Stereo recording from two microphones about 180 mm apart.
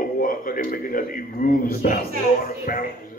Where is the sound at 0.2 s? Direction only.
50° left (ahead or behind).